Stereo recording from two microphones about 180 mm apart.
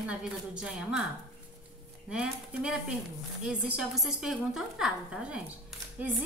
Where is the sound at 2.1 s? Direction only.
5° right (ahead or behind).